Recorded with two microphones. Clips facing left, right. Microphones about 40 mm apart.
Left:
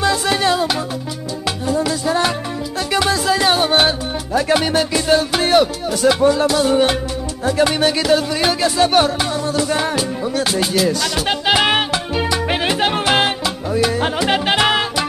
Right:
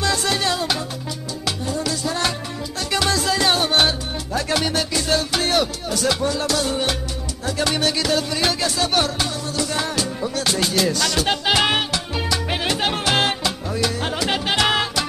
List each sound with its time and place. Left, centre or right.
0.0 s music: centre